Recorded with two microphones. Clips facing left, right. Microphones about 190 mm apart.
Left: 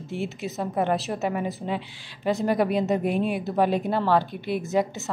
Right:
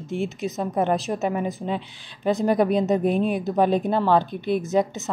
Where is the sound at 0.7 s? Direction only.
20° right (ahead or behind).